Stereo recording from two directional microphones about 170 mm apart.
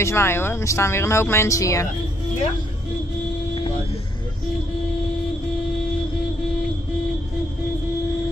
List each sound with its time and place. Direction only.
0.0 s speech: 15° left (ahead or behind)